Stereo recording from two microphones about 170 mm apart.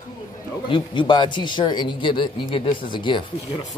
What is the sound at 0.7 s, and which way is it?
A man's voice, 30° left (ahead or behind).